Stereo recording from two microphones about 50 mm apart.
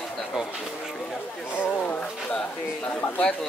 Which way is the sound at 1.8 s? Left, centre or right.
Left.